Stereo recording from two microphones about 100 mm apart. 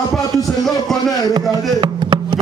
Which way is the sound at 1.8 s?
50° right (ahead or behind).